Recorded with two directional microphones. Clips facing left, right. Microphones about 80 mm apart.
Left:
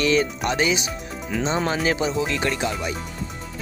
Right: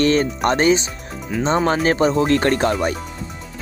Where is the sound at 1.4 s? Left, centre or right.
Right.